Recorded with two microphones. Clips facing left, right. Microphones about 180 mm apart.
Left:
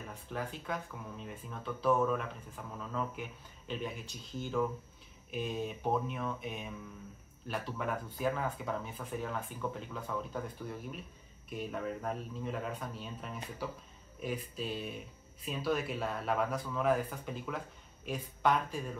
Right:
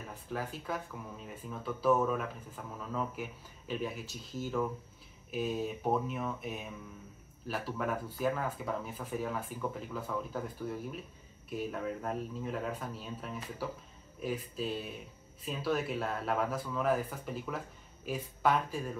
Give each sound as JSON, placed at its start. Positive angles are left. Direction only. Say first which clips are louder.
{"t": 0.3, "sound": "speech", "louder": "right 1 dB", "side_deg": -5}